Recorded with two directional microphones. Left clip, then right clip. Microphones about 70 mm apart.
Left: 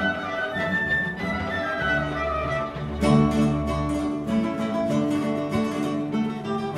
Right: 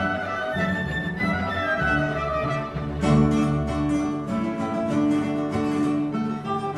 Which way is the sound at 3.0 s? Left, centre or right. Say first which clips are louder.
Left 1 dB; left.